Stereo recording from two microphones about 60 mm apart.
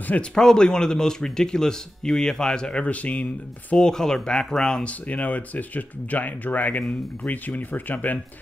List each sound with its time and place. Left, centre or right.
0.3 s speech: centre
3.7 s speech: centre
4.8 s speech: left